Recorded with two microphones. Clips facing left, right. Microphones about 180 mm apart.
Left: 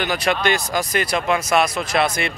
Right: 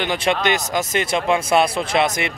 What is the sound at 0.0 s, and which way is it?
Speech, 25° right (ahead or behind).